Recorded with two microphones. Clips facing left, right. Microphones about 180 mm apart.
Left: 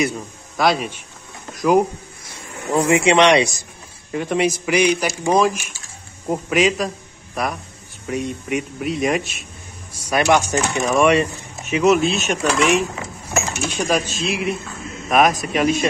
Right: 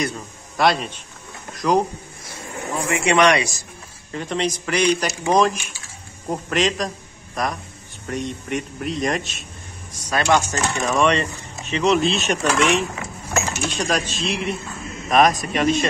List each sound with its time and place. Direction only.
0.6 s coin: 5° left (ahead or behind)
1.5 s speech: 5° left (ahead or behind)
2.8 s speech: 25° left (ahead or behind)
4.1 s speech: 10° left (ahead or behind)
6.2 s coin: 5° left (ahead or behind)
7.4 s speech: 5° left (ahead or behind)
11.7 s coin: 5° left (ahead or behind)